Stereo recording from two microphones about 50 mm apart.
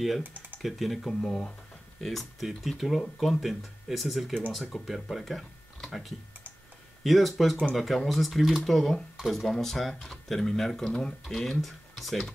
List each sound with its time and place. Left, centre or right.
0.6 s speech: centre
10.9 s speech: centre
11.2 s speech: centre